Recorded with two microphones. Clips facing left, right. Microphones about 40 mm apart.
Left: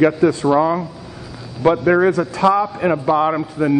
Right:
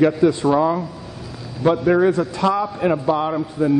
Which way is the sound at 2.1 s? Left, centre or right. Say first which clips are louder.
Left 1 dB; left.